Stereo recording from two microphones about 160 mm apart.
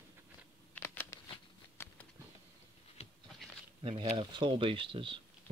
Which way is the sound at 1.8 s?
15° left (ahead or behind).